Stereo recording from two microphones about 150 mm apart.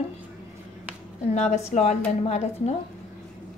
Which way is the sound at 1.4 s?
50° left (ahead or behind).